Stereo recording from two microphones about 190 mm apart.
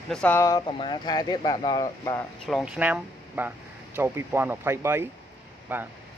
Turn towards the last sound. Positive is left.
turn(degrees=-10)  # may be behind; listen again after turning